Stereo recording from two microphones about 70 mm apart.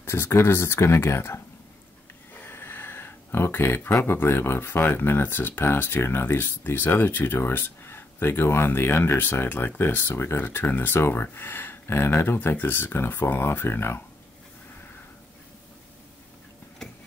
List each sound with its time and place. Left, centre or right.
0.0 s speech: left
2.3 s a sound: left
4.0 s speech: left